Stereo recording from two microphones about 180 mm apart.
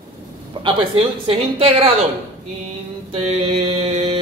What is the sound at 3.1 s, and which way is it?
Mantra, 35° right (ahead or behind).